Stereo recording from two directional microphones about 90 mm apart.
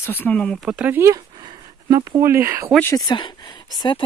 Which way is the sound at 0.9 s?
30° right (ahead or behind).